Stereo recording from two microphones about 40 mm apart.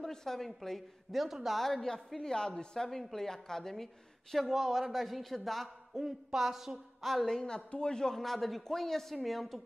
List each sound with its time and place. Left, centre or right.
0.0 s a woman's voice: centre
1.6 s a woman's voice: centre
6.0 s a woman's voice: centre
7.2 s a woman's voice: centre